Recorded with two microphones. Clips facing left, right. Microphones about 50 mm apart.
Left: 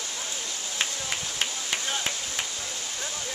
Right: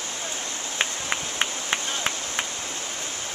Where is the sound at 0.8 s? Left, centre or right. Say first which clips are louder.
Right 4 dB; right.